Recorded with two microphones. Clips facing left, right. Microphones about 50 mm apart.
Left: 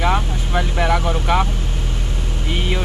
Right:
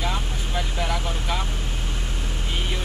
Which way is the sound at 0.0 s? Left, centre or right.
Left.